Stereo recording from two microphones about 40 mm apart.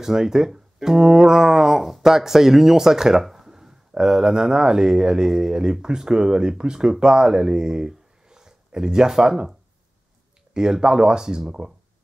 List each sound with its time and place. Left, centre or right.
0.0 s speech: centre